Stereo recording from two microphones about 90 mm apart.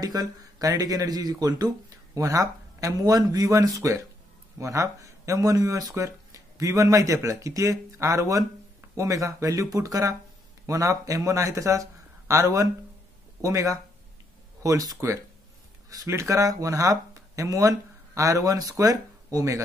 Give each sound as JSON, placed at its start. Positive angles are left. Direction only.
{"t": 0.0, "sound": "speech", "side_deg": -45}
{"t": 15.9, "sound": "speech", "side_deg": -35}